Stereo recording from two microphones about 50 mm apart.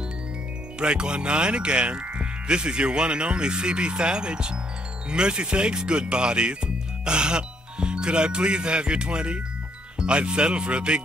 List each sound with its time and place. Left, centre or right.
0.7 s speech: centre